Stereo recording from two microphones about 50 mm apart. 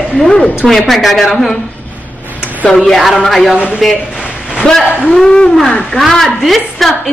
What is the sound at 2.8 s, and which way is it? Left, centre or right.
A woman's voice, centre.